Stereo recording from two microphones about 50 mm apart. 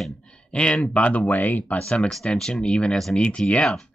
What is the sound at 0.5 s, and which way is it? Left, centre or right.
Speech, left.